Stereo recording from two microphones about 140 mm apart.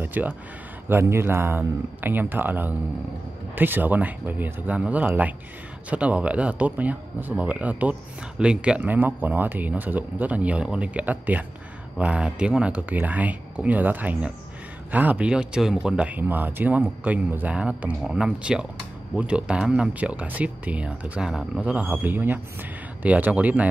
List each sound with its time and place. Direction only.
0.0 s speech: 10° right (ahead or behind)